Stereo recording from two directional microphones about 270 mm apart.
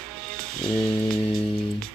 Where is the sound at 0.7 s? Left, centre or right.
Centre.